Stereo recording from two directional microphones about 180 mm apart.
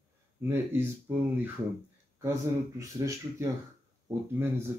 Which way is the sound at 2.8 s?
15° right (ahead or behind).